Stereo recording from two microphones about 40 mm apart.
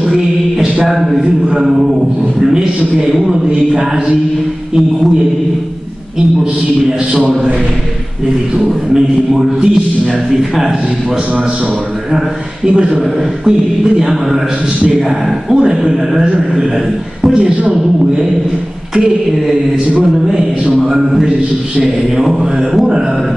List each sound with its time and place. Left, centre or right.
0.0 s music: centre
0.8 s a sound: centre
1.2 s mantra: centre
3.4 s a man's voice: right
8.5 s mantra: centre
12.6 s a man's voice: right
13.5 s mantra: centre
17.2 s a man's voice: right
20.7 s mantra: centre